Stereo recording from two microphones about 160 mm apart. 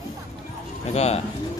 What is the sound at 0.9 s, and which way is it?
Speech, 40° left (ahead or behind).